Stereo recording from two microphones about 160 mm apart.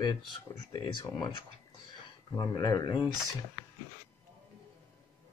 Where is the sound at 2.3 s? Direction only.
20° left (ahead or behind).